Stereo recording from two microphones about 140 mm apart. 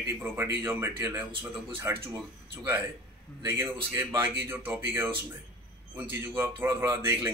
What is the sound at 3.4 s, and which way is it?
Speech, 15° right (ahead or behind).